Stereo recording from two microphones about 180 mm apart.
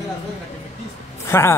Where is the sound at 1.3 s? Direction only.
15° left (ahead or behind).